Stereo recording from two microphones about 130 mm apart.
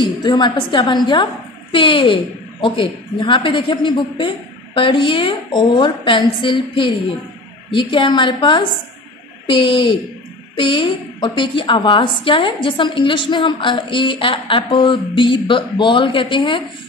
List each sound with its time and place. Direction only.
0.0 s a woman's voice: 35° left (ahead or behind)